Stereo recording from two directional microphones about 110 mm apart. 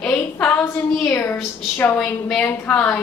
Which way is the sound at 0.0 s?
15° left (ahead or behind).